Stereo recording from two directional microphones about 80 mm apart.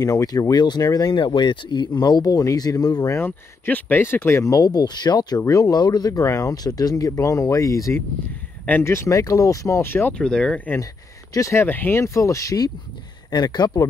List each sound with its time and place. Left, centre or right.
0.0 s speech: left
1.1 s speech: left
3.1 s speech: left
5.4 s speech: left
8.8 s speech: left
9.8 s speech: left
10.1 s speech: centre
11.3 s speech: left
11.6 s speech: left
13.3 s speech: left